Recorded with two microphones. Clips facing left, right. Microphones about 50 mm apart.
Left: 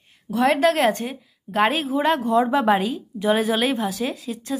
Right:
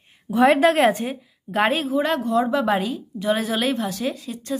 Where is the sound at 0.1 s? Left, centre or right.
Centre.